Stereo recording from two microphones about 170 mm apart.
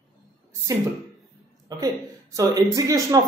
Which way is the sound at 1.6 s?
20° right (ahead or behind).